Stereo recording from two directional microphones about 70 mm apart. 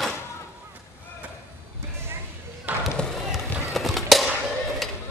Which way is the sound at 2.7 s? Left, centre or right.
Right.